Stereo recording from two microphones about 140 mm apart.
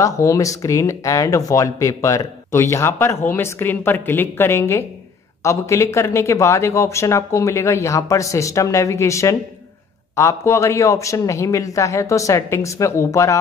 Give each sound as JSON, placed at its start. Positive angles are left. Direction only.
{"t": 0.0, "sound": "speech", "side_deg": 20}